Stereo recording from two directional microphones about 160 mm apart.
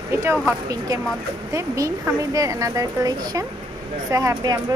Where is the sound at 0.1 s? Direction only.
15° right (ahead or behind).